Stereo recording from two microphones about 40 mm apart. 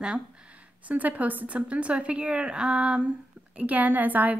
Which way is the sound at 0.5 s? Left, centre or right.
Right.